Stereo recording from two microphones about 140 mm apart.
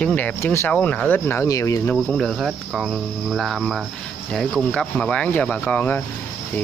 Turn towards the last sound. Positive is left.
turn(degrees=10)  # may be behind; listen again after turning